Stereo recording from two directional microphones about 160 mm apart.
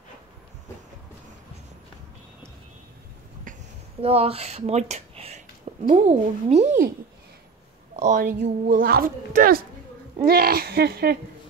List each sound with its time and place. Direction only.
3.5 s a sound: 55° right (ahead or behind)
4.0 s speech: 40° right (ahead or behind)
7.9 s speech: 50° right (ahead or behind)
8.4 s a woman's voice: 65° right (ahead or behind)
10.2 s speech: 75° right (ahead or behind)